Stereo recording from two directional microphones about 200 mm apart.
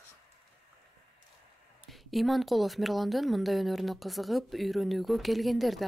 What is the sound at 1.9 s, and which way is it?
Speech, centre (ahead or behind).